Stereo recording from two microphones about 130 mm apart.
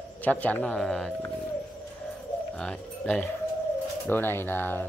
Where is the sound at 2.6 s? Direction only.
10° left (ahead or behind).